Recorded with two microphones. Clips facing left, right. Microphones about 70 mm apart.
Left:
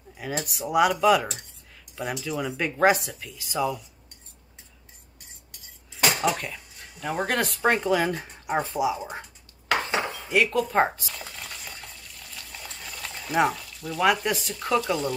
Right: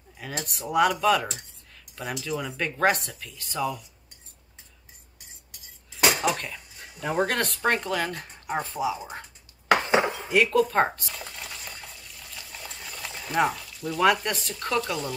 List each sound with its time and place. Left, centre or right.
0.2 s speech: centre
5.9 s speech: centre
9.7 s dishes: right
10.3 s stir: centre